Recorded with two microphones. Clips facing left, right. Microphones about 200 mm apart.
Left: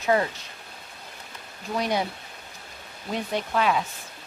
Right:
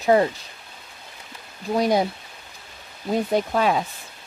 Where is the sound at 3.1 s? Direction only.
40° right (ahead or behind).